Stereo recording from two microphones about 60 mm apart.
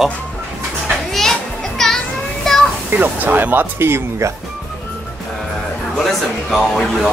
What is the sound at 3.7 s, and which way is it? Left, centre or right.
Speech, right.